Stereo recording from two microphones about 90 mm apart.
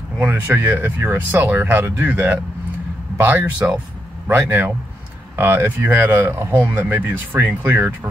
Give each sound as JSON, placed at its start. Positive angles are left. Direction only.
{"t": 0.2, "sound": "speech", "side_deg": -20}